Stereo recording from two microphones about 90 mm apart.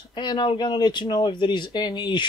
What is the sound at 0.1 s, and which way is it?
Speech, 55° left (ahead or behind).